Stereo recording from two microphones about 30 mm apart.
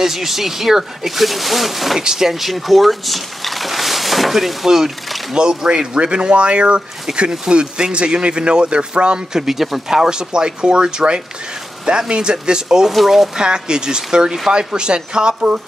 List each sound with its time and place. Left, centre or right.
0.0 s speech: centre
2.0 s speech: right
2.2 s speech: centre
5.3 s speech: right
5.9 s speech: right
9.3 s speech: centre
10.0 s speech: right
12.9 s speech: centre
13.4 s speech: right